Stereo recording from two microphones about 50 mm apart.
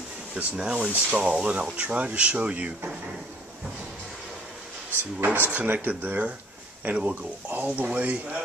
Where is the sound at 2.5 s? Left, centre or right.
Right.